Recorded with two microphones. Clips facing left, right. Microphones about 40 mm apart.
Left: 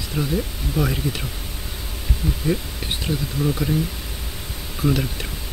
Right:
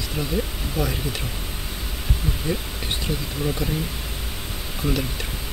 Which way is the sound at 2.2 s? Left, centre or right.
Right.